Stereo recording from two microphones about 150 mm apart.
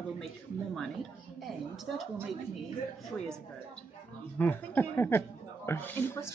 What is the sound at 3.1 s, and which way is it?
Speech, 5° left (ahead or behind).